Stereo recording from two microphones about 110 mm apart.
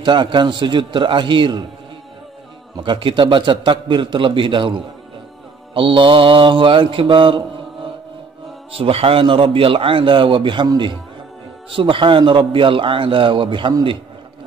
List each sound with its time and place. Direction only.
0.0 s a man's voice: 45° right (ahead or behind)
2.8 s a man's voice: 50° right (ahead or behind)
8.7 s a man's voice: 60° right (ahead or behind)
11.7 s a man's voice: 50° right (ahead or behind)